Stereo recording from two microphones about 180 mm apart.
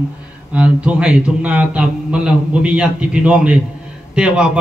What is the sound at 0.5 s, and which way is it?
A man's voice, 5° right (ahead or behind).